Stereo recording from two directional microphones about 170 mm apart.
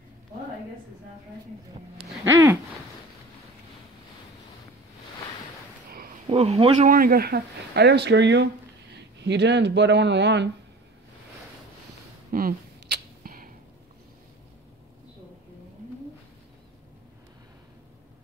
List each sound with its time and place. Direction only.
2.3 s a sound: 15° right (ahead or behind)
6.2 s speech: 35° right (ahead or behind)
6.9 s speech: 60° right (ahead or behind); by 10.5 s 90° right
12.3 s arrow: 65° right (ahead or behind)